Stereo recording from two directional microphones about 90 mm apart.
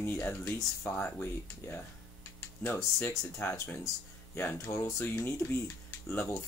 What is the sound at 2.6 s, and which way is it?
Speech, 25° left (ahead or behind).